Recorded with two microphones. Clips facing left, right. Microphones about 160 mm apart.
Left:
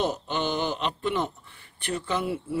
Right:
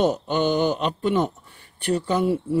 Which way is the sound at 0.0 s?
45° right (ahead or behind).